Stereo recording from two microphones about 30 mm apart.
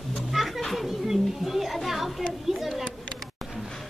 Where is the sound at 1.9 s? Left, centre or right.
Centre.